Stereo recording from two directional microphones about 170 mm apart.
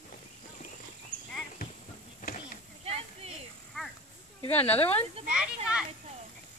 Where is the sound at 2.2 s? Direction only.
55° left (ahead or behind).